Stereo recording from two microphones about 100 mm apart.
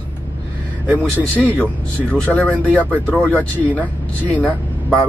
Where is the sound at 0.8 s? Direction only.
15° left (ahead or behind).